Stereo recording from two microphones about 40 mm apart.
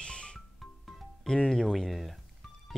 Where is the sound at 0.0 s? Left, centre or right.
Left.